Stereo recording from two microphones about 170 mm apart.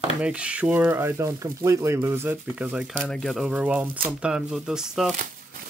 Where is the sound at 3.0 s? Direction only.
5° left (ahead or behind).